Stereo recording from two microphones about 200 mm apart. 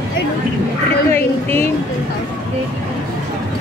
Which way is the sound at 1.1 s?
10° left (ahead or behind).